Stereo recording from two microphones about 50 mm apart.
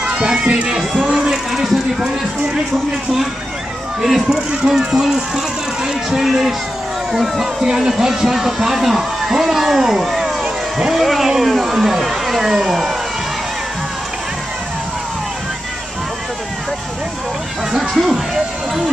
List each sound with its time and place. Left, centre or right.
0.0 s speech: right
1.2 s speech: centre
4.0 s speech: centre
17.7 s speech: centre